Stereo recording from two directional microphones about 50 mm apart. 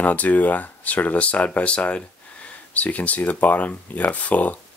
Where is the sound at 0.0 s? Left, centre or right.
Left.